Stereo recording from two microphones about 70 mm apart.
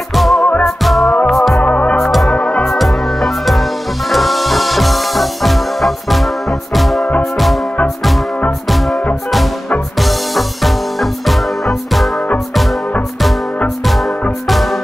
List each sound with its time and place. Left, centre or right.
0.1 s music: centre
1.6 s music: left
2.0 s music: centre
2.3 s music: centre
2.6 s music: centre
8.5 s music: centre
9.9 s music: centre
14.5 s music: centre